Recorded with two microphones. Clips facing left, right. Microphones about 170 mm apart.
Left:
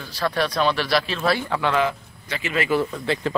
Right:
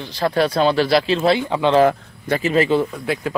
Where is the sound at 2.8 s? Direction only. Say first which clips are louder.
Right 1 dB; 10° right (ahead or behind).